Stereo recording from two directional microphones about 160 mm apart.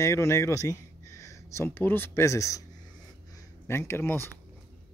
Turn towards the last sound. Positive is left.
turn(degrees=15)  # may be behind; listen again after turning